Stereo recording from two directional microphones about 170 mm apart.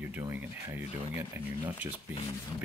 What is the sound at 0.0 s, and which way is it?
Speech, 10° right (ahead or behind).